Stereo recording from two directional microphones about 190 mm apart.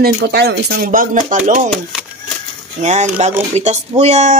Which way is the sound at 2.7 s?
40° right (ahead or behind).